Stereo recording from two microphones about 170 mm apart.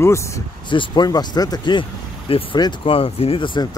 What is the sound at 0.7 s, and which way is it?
Speech, 25° left (ahead or behind).